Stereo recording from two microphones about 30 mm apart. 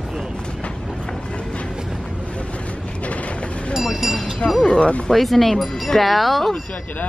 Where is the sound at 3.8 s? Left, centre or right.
Centre.